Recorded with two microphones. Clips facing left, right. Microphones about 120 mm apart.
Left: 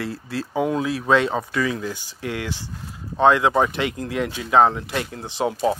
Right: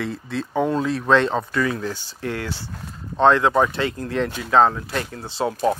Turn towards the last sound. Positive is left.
turn(degrees=15)  # may be behind; listen again after turning